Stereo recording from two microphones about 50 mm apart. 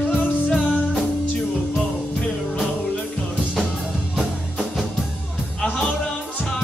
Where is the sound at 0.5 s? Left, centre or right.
Centre.